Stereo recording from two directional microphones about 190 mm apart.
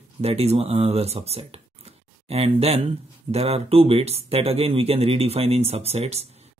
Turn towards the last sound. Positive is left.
turn(degrees=-35)  # may be behind; listen again after turning